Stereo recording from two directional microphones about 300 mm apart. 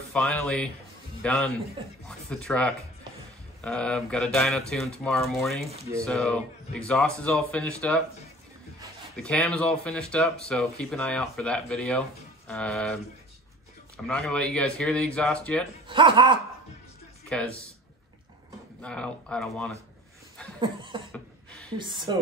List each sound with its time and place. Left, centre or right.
0.1 s speech: centre
9.1 s speech: centre
15.9 s speech: centre
17.3 s speech: centre
18.8 s speech: centre
20.6 s speech: centre
21.1 s a sound: centre
21.7 s speech: centre